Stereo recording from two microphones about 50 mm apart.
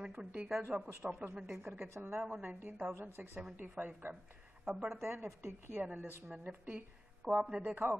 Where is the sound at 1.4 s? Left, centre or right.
Right.